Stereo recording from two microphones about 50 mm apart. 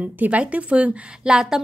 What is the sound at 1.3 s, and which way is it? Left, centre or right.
Speech, centre.